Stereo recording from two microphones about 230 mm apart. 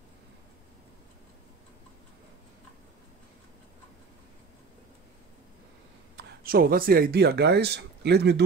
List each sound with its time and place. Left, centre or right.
6.1 s speech: right